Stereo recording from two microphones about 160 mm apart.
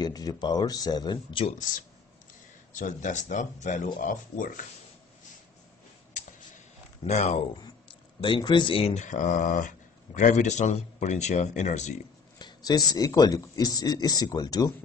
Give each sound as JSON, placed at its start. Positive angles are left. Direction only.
{"t": 0.0, "sound": "speech", "side_deg": 25}
{"t": 2.7, "sound": "speech", "side_deg": 50}
{"t": 7.1, "sound": "speech", "side_deg": 45}
{"t": 8.2, "sound": "speech", "side_deg": 30}
{"t": 12.4, "sound": "speech", "side_deg": 25}